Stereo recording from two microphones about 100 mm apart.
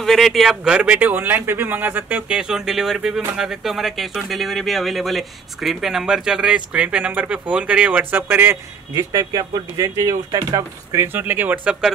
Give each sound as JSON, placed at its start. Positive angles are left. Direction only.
{"t": 0.0, "sound": "speech", "side_deg": 0}
{"t": 8.9, "sound": "speech", "side_deg": -35}
{"t": 11.1, "sound": "speech", "side_deg": -20}